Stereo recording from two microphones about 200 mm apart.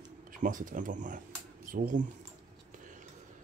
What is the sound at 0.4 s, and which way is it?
Speech, 40° right (ahead or behind).